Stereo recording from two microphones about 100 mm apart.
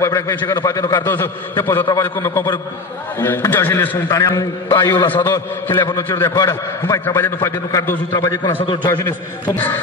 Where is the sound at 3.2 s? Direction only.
20° left (ahead or behind).